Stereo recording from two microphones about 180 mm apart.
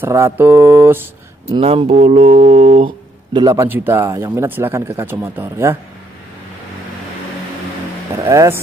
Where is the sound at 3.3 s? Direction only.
20° right (ahead or behind).